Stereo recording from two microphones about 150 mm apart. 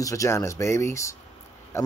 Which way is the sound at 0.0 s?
20° left (ahead or behind).